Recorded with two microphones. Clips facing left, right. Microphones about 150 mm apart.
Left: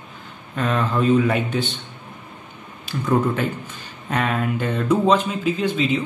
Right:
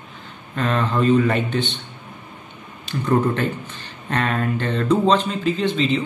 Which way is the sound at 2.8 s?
5° left (ahead or behind).